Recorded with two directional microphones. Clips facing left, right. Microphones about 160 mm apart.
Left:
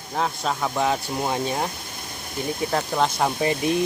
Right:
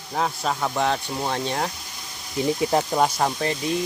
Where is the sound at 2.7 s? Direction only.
15° right (ahead or behind).